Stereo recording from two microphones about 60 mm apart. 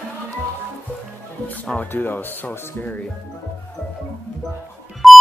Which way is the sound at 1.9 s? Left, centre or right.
Left.